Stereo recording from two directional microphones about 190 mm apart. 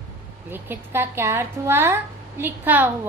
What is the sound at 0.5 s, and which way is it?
A woman's voice, 10° right (ahead or behind).